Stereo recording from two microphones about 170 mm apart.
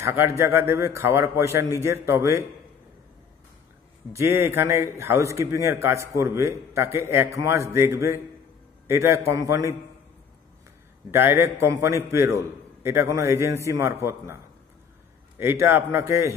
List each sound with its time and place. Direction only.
0.0 s a man's voice: 15° right (ahead or behind)
4.1 s a man's voice: 15° right (ahead or behind)
11.1 s a man's voice: 15° right (ahead or behind)